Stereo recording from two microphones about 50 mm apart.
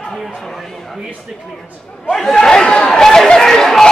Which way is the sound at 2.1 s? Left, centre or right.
Centre.